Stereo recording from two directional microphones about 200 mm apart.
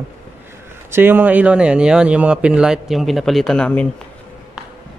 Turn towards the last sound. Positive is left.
turn(degrees=5)  # may be behind; listen again after turning